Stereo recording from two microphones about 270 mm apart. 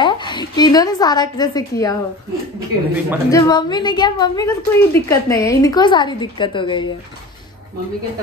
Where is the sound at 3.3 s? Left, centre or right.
Centre.